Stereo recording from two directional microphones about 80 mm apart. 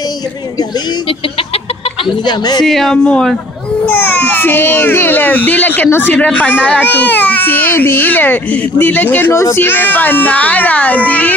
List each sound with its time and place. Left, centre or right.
2.2 s speech: left
2.6 s speech: centre
3.8 s speech: left
9.3 s speech: left; by 11.3 s centre